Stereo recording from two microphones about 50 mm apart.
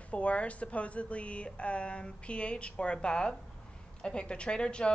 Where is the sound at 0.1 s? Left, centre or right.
Left.